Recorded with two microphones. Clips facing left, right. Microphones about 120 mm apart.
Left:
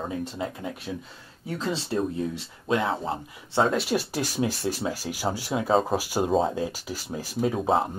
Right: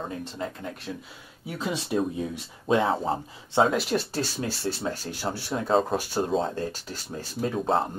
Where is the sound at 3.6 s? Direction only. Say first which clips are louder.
Right 1 dB; centre (ahead or behind).